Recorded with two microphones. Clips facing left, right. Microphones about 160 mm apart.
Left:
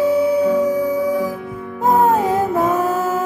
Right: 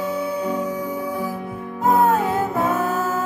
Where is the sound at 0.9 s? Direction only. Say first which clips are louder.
Left 8 dB; 85° left.